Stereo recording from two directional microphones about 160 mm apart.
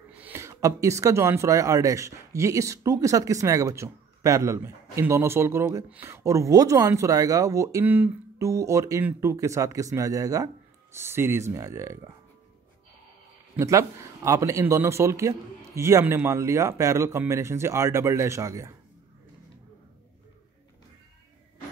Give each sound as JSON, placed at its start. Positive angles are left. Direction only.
{"t": 0.2, "sound": "speech", "side_deg": -15}
{"t": 13.6, "sound": "speech", "side_deg": -20}